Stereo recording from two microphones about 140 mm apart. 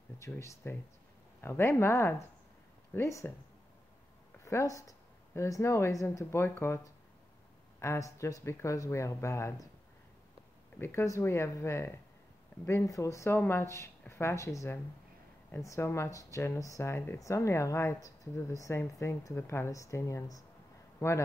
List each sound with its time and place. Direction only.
0.2 s speech: 20° left (ahead or behind)
4.5 s speech: 20° left (ahead or behind)
10.8 s speech: 20° left (ahead or behind)